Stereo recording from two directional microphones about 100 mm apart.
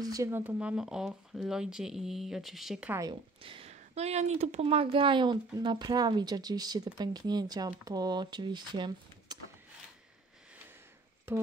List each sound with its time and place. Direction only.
0.0 s a sound: 40° right (ahead or behind)
0.3 s speech: 20° right (ahead or behind)
3.1 s speech: 60° right (ahead or behind)